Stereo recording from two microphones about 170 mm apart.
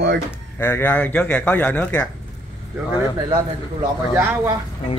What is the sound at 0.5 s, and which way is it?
Speech, 15° left (ahead or behind).